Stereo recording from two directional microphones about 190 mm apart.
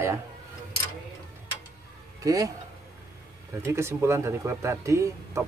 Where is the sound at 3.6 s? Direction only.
15° right (ahead or behind).